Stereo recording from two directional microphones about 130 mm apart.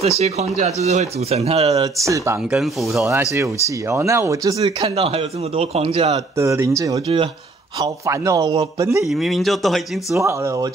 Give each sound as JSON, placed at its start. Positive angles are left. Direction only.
{"t": 0.2, "sound": "speech", "side_deg": -55}
{"t": 1.8, "sound": "a man's voice", "side_deg": -25}
{"t": 2.5, "sound": "speech", "side_deg": 0}
{"t": 3.9, "sound": "a man's voice", "side_deg": -20}
{"t": 4.6, "sound": "speech", "side_deg": -40}
{"t": 6.1, "sound": "a man's voice", "side_deg": -20}
{"t": 9.0, "sound": "speech", "side_deg": 0}
{"t": 10.1, "sound": "a man's voice", "side_deg": -20}